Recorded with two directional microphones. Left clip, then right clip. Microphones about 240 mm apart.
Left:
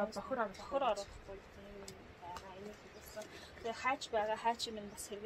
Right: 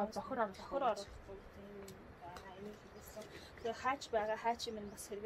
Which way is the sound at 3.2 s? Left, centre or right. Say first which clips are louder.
Left 1 dB; centre.